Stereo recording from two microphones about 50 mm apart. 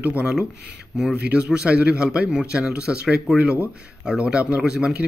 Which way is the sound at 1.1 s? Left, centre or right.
Right.